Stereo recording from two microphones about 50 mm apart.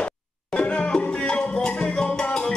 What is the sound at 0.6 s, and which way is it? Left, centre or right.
Salsa music, centre.